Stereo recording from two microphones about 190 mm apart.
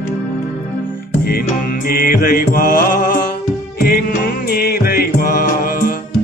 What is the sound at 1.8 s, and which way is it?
Music, 50° left (ahead or behind).